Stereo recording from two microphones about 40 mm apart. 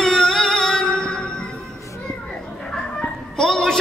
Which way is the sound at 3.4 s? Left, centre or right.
Centre.